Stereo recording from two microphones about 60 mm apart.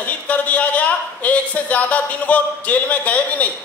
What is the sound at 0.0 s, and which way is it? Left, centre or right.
A man's voice, left.